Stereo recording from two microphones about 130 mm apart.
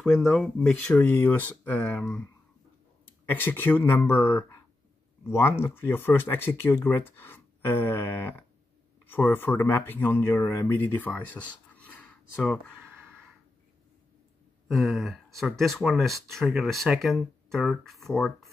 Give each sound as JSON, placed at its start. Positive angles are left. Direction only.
{"t": 0.0, "sound": "speech", "side_deg": 5}
{"t": 14.7, "sound": "speech", "side_deg": 0}